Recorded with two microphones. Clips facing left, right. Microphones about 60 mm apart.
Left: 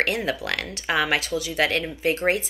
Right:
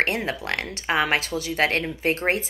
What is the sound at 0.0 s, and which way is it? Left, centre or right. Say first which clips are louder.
Speech: even; right.